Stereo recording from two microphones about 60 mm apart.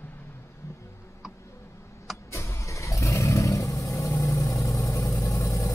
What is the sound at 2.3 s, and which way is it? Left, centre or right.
Vehicle, left.